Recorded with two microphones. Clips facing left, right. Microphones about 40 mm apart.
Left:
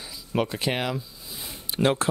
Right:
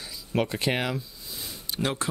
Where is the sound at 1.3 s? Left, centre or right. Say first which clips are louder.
Even; centre.